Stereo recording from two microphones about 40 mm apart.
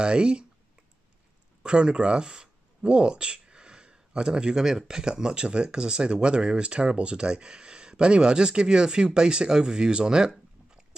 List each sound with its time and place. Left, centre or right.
0.0 s speech: right
1.6 s speech: right